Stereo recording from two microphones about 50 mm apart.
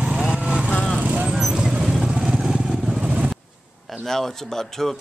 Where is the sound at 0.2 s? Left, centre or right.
Right.